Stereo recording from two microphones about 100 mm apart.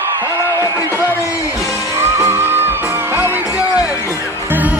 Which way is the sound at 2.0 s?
25° right (ahead or behind).